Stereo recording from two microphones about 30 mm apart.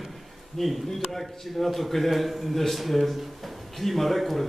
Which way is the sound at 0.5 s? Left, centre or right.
Centre.